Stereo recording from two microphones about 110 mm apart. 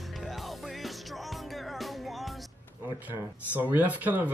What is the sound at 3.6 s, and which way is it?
Speech, 15° right (ahead or behind).